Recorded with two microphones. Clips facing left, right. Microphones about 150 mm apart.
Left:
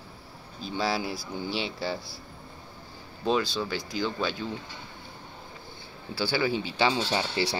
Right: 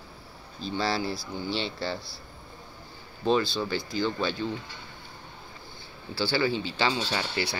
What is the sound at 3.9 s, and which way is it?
Speech, 5° left (ahead or behind).